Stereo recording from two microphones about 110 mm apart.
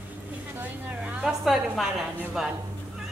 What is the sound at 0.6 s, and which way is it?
Speech, 15° right (ahead or behind).